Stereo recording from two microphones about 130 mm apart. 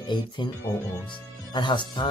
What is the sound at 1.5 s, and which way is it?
Speech, 35° left (ahead or behind).